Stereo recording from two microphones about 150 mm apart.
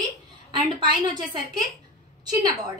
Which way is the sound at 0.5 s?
30° right (ahead or behind).